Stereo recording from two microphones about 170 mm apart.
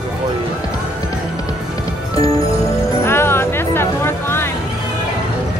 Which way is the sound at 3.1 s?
15° left (ahead or behind).